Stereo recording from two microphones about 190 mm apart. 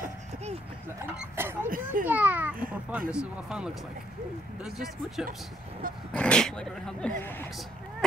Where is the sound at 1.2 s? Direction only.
10° right (ahead or behind).